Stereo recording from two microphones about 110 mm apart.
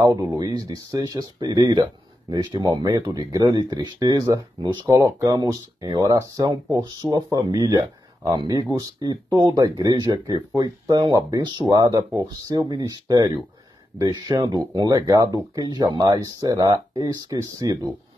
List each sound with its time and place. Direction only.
0.0 s speech: 30° right (ahead or behind)